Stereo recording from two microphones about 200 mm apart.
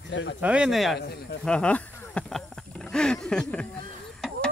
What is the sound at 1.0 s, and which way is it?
Speech, 55° left (ahead or behind).